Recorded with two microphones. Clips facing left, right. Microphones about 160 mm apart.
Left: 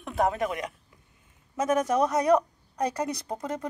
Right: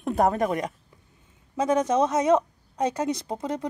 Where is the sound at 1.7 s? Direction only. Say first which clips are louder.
Right 2 dB; 25° right (ahead or behind).